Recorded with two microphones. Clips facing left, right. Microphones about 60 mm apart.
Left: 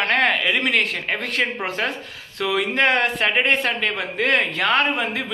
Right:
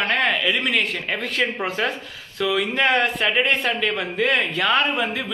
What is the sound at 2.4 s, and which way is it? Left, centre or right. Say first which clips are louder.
Speech: left 1 dB; left.